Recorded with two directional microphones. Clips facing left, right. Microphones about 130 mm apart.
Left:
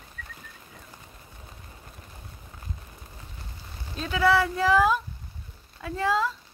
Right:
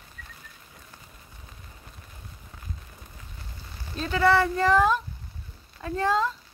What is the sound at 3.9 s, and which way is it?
Speech, centre (ahead or behind).